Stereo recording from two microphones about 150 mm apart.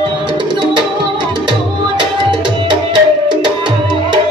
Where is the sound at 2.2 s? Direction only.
30° right (ahead or behind).